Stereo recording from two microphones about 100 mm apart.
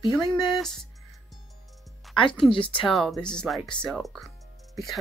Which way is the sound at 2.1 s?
60° left (ahead or behind).